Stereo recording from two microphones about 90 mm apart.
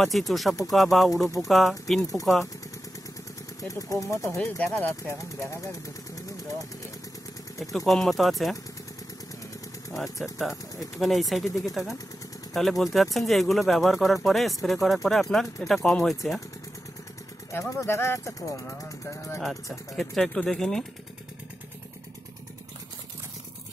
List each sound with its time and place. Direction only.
0.0 s speech: centre (ahead or behind)
2.0 s speech: 40° left (ahead or behind)
3.6 s speech: 40° left (ahead or behind)
4.4 s speech: 15° left (ahead or behind); by 6.2 s 35° left (ahead or behind)
7.7 s speech: centre (ahead or behind)
9.9 s speech: centre (ahead or behind)
17.5 s speech: 30° left (ahead or behind)
20.0 s speech: 5° left (ahead or behind)